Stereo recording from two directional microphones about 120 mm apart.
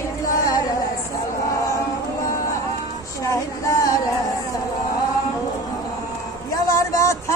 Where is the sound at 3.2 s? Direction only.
25° left (ahead or behind).